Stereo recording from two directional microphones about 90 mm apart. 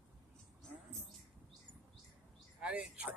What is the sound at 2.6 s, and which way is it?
Speech, 15° right (ahead or behind).